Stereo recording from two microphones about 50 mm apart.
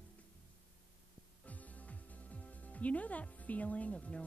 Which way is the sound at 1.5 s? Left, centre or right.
Left.